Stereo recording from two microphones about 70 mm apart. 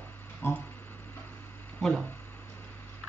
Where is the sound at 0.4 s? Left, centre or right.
Left.